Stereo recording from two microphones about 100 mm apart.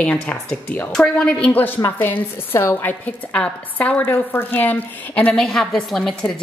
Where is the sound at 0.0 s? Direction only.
10° left (ahead or behind).